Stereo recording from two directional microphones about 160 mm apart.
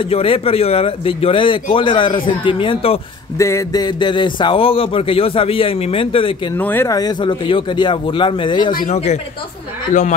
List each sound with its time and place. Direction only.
0.0 s speech: 35° left (ahead or behind)
3.3 s speech: 20° left (ahead or behind); by 6.5 s 35° left (ahead or behind)
6.5 s speech: 15° left (ahead or behind); by 8.7 s 30° left (ahead or behind)
8.9 s speech: 45° left (ahead or behind)